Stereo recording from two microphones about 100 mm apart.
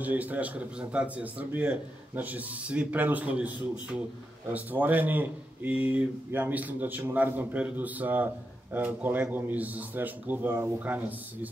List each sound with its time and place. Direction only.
0.0 s speech: 15° right (ahead or behind)